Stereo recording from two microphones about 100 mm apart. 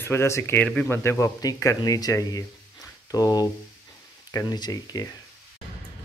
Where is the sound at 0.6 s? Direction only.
10° left (ahead or behind).